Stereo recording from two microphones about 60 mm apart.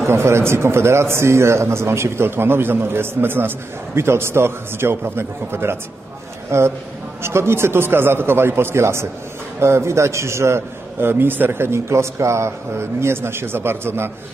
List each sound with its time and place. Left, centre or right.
0.0 s a man's voice: right